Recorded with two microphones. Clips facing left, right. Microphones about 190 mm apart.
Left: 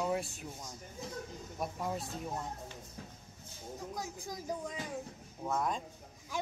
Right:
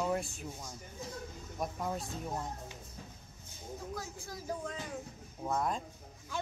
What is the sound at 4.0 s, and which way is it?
Speech, 15° left (ahead or behind).